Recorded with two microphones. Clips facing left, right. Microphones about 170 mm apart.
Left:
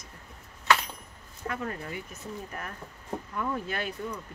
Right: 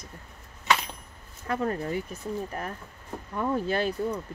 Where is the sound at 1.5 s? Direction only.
35° right (ahead or behind).